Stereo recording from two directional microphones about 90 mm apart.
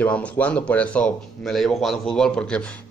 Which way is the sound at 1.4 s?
Centre (ahead or behind).